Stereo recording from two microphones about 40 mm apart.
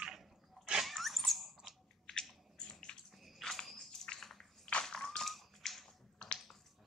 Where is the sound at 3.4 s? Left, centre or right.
Centre.